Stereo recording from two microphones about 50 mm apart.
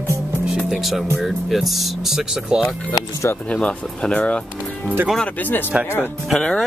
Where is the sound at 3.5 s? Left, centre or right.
Left.